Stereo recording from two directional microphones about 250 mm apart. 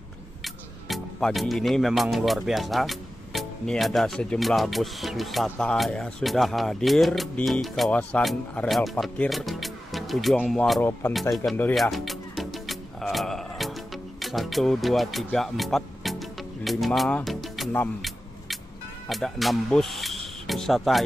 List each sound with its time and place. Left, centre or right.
0.4 s speech: centre
14.2 s music: centre
19.0 s speech: centre